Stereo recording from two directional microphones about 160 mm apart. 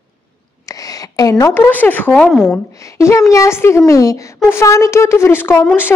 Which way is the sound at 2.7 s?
20° left (ahead or behind).